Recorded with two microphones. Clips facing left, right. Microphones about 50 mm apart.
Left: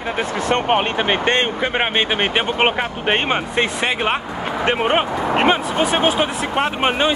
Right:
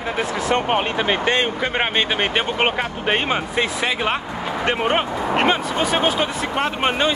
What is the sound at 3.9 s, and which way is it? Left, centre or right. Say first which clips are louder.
Speech: left 2 dB; left.